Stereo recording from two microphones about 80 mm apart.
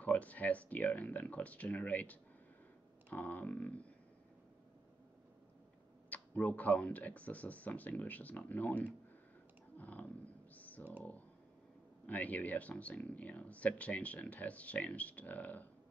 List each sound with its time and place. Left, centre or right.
0.0 s speech: centre
6.0 s speech: centre
9.8 s clicking: centre
10.5 s computer keyboard: centre
12.1 s speech: centre